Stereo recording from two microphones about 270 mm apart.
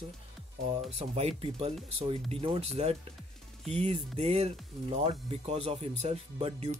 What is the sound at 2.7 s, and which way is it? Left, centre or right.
Speech, right.